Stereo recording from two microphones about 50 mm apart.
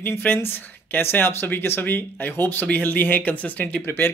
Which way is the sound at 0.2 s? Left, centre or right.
Left.